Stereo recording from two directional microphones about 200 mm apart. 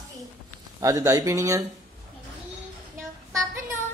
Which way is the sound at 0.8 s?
15° right (ahead or behind).